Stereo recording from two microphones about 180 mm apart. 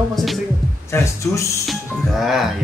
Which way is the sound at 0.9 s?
15° left (ahead or behind).